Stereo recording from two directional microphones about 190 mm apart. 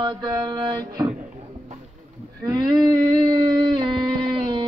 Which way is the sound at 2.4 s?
20° right (ahead or behind).